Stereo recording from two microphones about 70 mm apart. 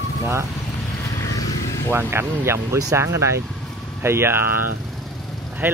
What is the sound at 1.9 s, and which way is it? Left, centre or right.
Speech, right.